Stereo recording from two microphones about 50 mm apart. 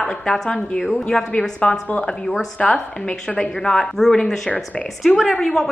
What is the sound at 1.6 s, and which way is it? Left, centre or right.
A woman's voice, left.